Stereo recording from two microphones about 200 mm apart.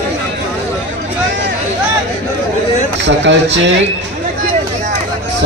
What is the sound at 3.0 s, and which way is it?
Speech, 65° right (ahead or behind).